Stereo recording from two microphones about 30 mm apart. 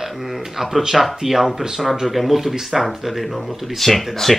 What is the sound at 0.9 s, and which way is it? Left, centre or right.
Speech, centre.